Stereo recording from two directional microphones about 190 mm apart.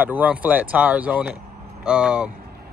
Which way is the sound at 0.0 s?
10° right (ahead or behind).